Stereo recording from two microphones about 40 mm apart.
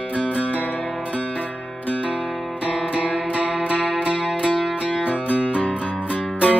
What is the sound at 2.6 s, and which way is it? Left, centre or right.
Music, right.